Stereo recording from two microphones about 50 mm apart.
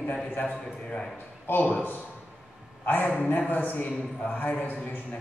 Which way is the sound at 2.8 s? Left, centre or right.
Left.